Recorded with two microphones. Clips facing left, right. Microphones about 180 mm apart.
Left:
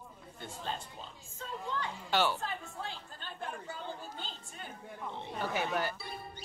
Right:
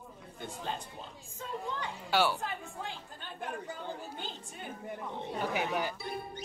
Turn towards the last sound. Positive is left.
turn(degrees=-20)  # may be behind; listen again after turning